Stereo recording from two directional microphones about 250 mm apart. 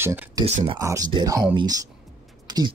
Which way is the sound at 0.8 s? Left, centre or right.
Centre.